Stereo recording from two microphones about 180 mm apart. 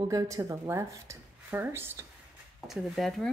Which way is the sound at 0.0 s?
20° right (ahead or behind).